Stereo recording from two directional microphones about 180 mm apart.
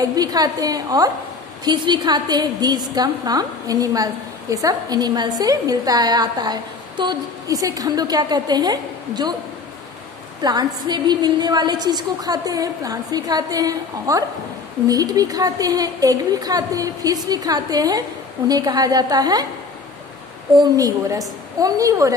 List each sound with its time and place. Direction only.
0.0 s a woman's voice: 20° right (ahead or behind)
10.4 s a woman's voice: 20° right (ahead or behind)
20.5 s a woman's voice: 20° right (ahead or behind)